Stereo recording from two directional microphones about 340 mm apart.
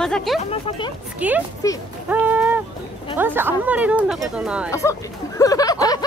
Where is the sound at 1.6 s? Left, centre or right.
Centre.